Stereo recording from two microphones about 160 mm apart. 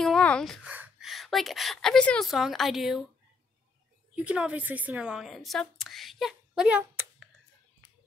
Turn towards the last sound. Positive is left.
turn(degrees=-10)  # may be behind; listen again after turning